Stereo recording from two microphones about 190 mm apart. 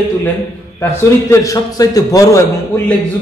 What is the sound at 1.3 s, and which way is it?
A man's voice, 15° left (ahead or behind).